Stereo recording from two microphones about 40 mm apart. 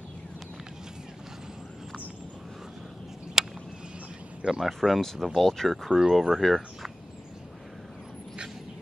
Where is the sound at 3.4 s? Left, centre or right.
Centre.